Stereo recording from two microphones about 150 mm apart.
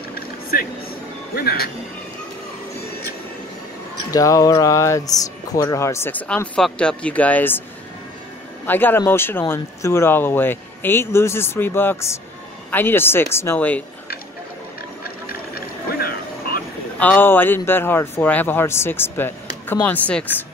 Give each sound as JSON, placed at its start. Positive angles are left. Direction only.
{"t": 0.1, "sound": "vehicle", "side_deg": 80}
{"t": 1.3, "sound": "speech", "side_deg": 90}
{"t": 4.1, "sound": "speech", "side_deg": 25}
{"t": 8.6, "sound": "speech", "side_deg": 15}
{"t": 17.0, "sound": "speech", "side_deg": 15}